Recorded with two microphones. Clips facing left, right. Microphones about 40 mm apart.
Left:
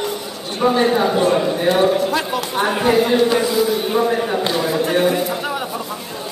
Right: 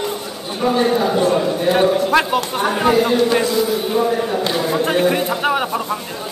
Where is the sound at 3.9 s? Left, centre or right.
Centre.